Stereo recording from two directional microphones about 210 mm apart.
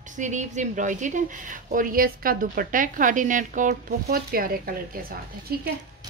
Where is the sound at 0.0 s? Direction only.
35° right (ahead or behind).